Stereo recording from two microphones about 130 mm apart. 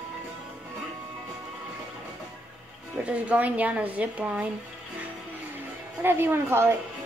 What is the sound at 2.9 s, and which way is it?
Speech, 10° right (ahead or behind).